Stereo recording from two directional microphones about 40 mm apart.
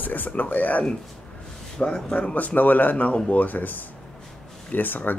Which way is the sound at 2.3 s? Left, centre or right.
Left.